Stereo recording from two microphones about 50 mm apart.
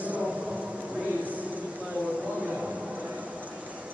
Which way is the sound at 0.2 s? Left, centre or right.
Centre.